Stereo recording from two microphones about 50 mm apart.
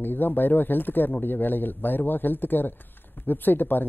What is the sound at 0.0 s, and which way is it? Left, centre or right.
A man's voice, left.